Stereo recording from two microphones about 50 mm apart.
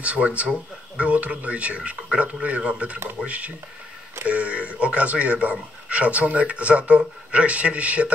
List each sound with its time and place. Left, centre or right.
0.0 s speech: right